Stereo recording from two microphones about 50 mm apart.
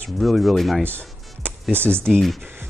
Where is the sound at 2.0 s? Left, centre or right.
Centre.